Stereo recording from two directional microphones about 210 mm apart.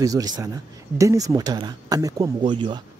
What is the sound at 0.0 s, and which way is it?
Speech, 15° right (ahead or behind).